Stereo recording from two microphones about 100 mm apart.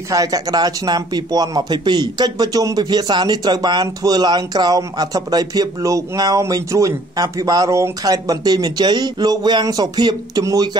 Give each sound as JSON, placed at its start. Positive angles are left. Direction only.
{"t": 0.1, "sound": "speech", "side_deg": -35}